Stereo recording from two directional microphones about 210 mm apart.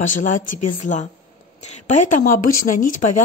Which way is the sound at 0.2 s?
35° left (ahead or behind).